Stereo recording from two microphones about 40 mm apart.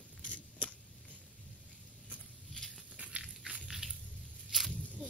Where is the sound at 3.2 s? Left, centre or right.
Centre.